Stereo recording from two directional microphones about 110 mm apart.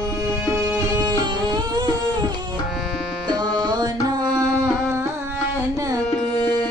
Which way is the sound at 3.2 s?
40° right (ahead or behind).